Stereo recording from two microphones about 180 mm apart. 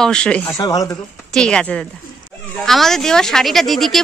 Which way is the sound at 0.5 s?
20° left (ahead or behind).